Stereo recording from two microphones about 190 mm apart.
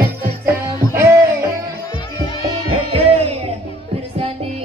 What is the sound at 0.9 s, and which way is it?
Music, 15° right (ahead or behind).